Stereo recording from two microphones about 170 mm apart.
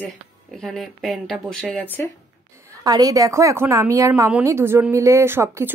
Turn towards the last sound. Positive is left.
turn(degrees=-15)  # may be behind; listen again after turning